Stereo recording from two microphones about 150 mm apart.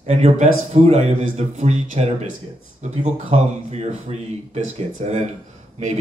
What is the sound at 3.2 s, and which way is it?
Speech, 45° right (ahead or behind).